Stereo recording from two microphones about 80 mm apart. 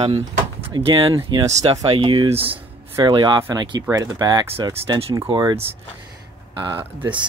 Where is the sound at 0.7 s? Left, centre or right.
Right.